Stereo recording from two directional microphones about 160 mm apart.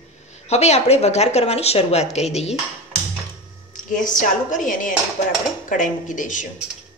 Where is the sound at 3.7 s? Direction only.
55° left (ahead or behind).